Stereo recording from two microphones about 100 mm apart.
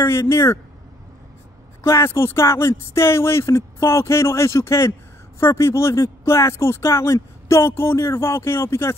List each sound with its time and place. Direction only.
0.0 s speech: 25° left (ahead or behind)
1.8 s speech: 25° left (ahead or behind)